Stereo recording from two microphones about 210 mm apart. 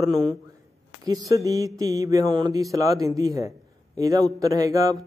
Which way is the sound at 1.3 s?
15° right (ahead or behind).